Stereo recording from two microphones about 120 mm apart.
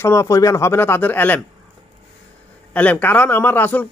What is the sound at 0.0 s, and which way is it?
Speech, 25° left (ahead or behind).